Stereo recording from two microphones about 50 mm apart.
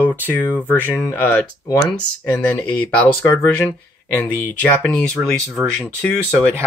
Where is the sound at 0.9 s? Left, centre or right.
Left.